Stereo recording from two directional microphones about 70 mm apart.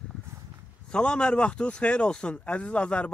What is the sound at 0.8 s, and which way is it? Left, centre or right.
A man's voice, centre.